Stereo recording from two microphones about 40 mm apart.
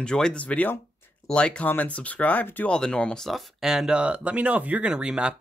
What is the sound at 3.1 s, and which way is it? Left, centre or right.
Speech, centre.